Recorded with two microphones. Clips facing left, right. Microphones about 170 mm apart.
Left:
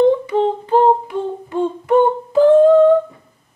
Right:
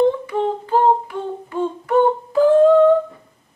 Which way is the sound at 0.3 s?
20° left (ahead or behind).